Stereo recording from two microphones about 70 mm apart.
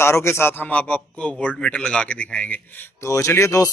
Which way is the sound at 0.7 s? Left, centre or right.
Centre.